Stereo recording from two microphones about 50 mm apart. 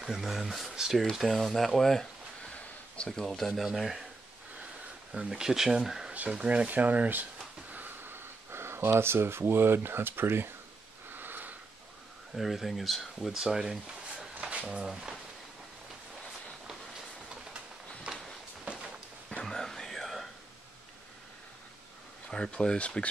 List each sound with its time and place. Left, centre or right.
0.0 s speech: centre
1.2 s speech: centre
3.1 s speech: centre
3.6 s speech: centre
5.1 s speech: centre
6.1 s speech: right
6.7 s speech: right
7.7 s a sound: right
12.4 s speech: centre
14.5 s speech: right
18.7 s a sound: centre
19.4 s whispering: centre
22.3 s speech: centre